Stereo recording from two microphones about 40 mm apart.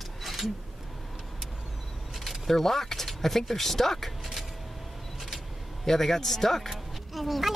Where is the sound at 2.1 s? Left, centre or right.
Centre.